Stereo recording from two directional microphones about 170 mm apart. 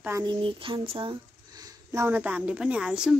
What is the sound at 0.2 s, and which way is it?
Speech, 30° right (ahead or behind).